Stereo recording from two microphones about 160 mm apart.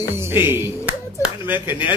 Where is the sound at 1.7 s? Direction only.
30° left (ahead or behind).